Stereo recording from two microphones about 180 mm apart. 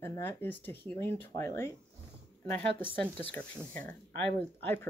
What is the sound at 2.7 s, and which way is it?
Speech, 30° right (ahead or behind).